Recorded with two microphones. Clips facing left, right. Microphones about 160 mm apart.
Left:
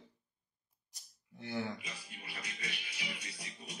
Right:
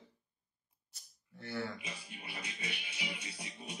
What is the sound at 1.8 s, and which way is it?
Music, 20° right (ahead or behind).